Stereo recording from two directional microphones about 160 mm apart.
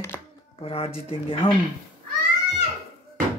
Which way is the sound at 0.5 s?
40° left (ahead or behind).